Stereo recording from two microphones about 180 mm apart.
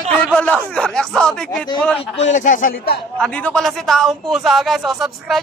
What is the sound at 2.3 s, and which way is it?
Speech, 45° left (ahead or behind).